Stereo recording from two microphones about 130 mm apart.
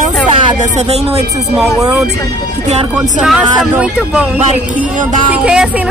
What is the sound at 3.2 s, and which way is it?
A woman's voice, 5° right (ahead or behind).